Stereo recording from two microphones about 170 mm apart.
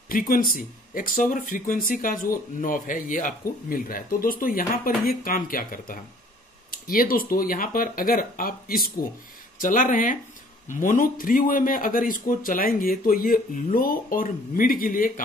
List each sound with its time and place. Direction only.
0.1 s speech: 55° left (ahead or behind)